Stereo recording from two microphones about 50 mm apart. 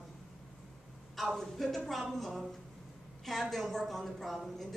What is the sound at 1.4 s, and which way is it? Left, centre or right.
A woman's voice, centre.